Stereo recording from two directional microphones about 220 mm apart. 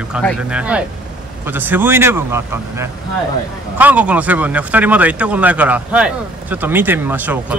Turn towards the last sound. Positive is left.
turn(degrees=-10)  # may be behind; listen again after turning